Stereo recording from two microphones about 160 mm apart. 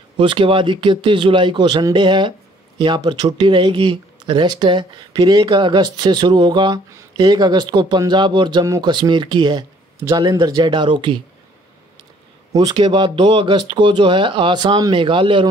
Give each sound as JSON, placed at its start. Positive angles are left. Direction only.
{"t": 0.2, "sound": "speech", "side_deg": -30}
{"t": 12.5, "sound": "speech", "side_deg": -25}